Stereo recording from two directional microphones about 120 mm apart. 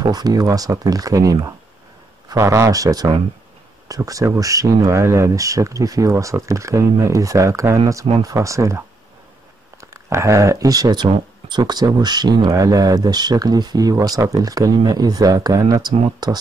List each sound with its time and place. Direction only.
0.0 s speech: 35° right (ahead or behind)